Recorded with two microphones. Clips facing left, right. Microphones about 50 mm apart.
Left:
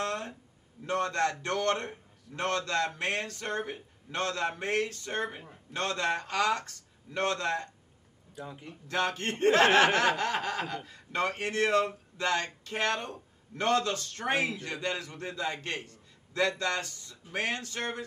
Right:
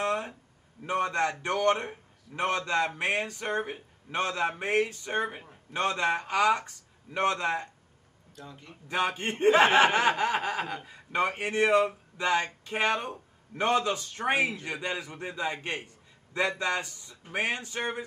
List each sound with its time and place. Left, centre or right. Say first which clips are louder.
0.0 s a sound: right 4 dB; centre
0.8 s speech: right 1 dB; centre
8.4 s a man's voice: left 4 dB; centre
8.8 s speech: right 2 dB; centre